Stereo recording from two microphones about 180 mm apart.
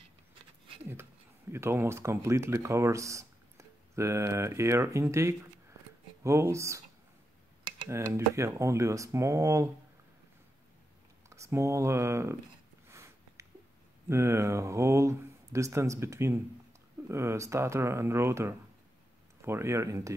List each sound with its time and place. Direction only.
1.5 s speech: 15° right (ahead or behind)
7.9 s speech: 15° right (ahead or behind)
11.2 s speech: 15° right (ahead or behind)
12.8 s a sound: 15° right (ahead or behind)
14.0 s speech: 15° right (ahead or behind)